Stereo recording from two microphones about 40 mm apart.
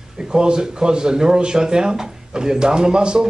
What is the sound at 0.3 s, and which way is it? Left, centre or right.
Speech, centre.